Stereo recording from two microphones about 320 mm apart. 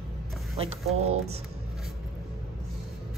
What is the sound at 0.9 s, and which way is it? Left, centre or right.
Speech, centre.